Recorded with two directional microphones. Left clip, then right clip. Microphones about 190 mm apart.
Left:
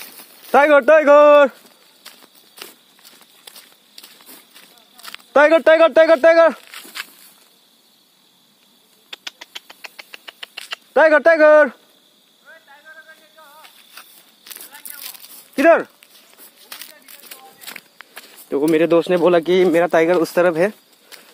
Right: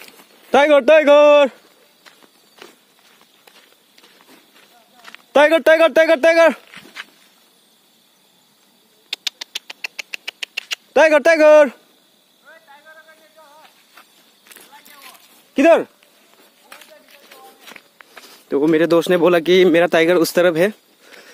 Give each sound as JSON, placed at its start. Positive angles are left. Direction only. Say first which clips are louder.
{"t": 0.5, "sound": "speech", "louder": "even", "side_deg": -35}
{"t": 2.0, "sound": "walk", "louder": "left 4 dB", "side_deg": 60}
{"t": 3.4, "sound": "a sound", "louder": "left 6 dB", "side_deg": 65}
{"t": 5.3, "sound": "speech", "louder": "even", "side_deg": -30}
{"t": 6.7, "sound": "dog", "louder": "left 3 dB", "side_deg": 70}
{"t": 9.1, "sound": "rodents", "louder": "right 7 dB", "side_deg": -40}
{"t": 10.7, "sound": "speech", "louder": "even", "side_deg": -30}
{"t": 12.4, "sound": "vehicle", "louder": "even", "side_deg": 20}
{"t": 14.0, "sound": "a sound", "louder": "left 4 dB", "side_deg": 60}
{"t": 15.5, "sound": "speech", "louder": "even", "side_deg": -40}
{"t": 16.6, "sound": "a sound", "louder": "left 4 dB", "side_deg": 60}
{"t": 18.5, "sound": "speech", "louder": "even", "side_deg": -15}